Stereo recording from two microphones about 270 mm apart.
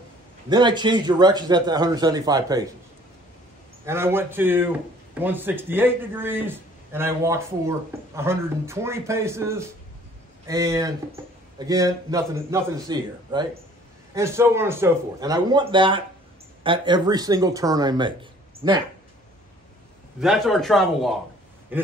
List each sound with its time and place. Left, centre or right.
0.5 s a man's voice: centre
3.8 s a man's voice: centre
20.2 s a man's voice: centre